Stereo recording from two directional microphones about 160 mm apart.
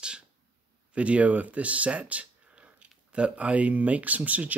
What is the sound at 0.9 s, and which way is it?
Speech, 10° right (ahead or behind).